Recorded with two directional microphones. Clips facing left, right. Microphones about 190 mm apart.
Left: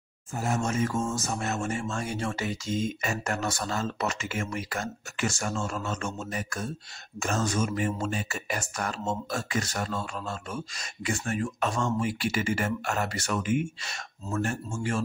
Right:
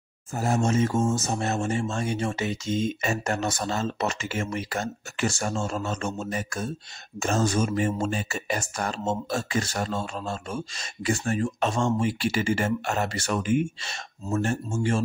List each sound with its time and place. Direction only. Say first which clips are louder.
0.4 s speech: right 4 dB; 30° right (ahead or behind)